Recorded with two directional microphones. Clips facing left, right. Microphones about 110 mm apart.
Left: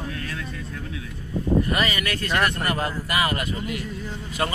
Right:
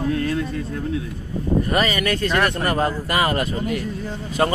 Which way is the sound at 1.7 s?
35° right (ahead or behind).